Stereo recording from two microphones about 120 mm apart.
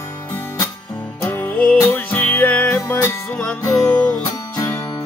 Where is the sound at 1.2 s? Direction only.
20° left (ahead or behind).